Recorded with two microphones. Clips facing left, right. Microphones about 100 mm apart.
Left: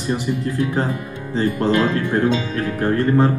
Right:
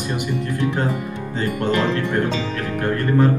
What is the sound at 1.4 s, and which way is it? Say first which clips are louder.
Speech: left 3 dB; 35° left (ahead or behind).